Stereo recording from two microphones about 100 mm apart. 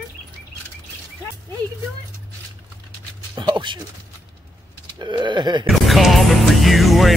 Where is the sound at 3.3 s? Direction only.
50° right (ahead or behind).